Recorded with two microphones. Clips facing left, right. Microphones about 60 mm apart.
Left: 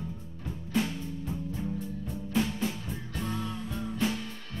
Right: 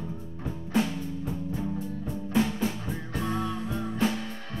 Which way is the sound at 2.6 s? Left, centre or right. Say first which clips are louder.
Right 3 dB; right.